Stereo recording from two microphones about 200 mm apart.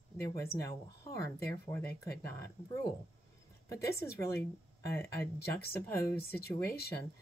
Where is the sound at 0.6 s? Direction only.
15° left (ahead or behind).